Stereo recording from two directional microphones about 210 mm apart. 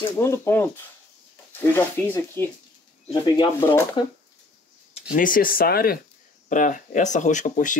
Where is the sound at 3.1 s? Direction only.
20° left (ahead or behind).